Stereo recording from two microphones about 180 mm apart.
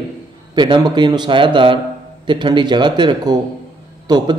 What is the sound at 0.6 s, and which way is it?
A man's voice, 25° right (ahead or behind).